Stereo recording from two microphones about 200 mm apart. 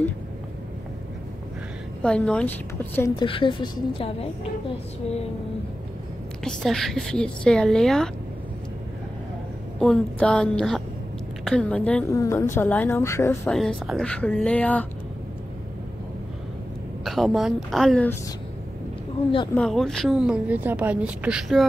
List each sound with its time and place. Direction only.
2.0 s a woman's voice: 5° left (ahead or behind)
3.2 s a woman's voice: 25° left (ahead or behind)
6.4 s a woman's voice: centre (ahead or behind)
9.8 s a woman's voice: 5° left (ahead or behind)
13.5 s a woman's voice: centre (ahead or behind)
17.0 s a woman's voice: centre (ahead or behind)
19.5 s a woman's voice: 5° left (ahead or behind)